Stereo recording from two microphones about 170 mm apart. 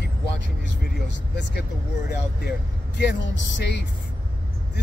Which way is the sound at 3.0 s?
90° left.